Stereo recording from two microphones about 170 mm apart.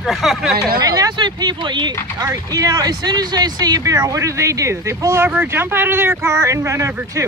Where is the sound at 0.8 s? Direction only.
20° right (ahead or behind).